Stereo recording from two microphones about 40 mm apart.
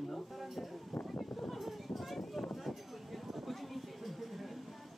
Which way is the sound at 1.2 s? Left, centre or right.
Centre.